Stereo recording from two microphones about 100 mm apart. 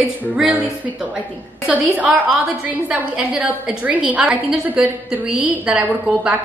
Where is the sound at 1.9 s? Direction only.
10° right (ahead or behind).